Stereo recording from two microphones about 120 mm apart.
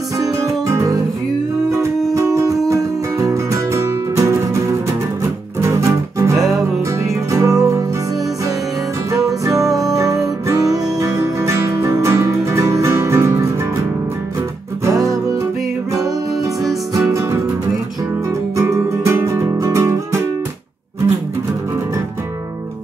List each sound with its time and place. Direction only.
0.2 s music: 25° right (ahead or behind)
2.1 s music: 25° right (ahead or behind)
9.1 s music: 30° right (ahead or behind)
14.9 s music: 25° right (ahead or behind)
17.1 s music: 25° right (ahead or behind)
18.6 s music: 25° right (ahead or behind)